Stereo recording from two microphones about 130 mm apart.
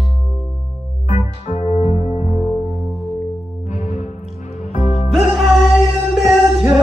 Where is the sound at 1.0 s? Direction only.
65° left (ahead or behind).